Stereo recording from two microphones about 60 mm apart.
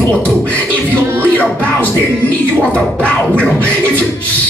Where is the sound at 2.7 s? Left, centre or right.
Left.